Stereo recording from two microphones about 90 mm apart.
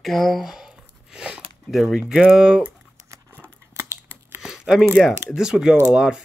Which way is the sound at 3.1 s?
25° right (ahead or behind).